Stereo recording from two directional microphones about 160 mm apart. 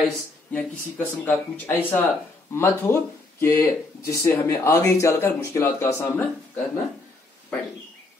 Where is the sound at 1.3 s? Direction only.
10° left (ahead or behind).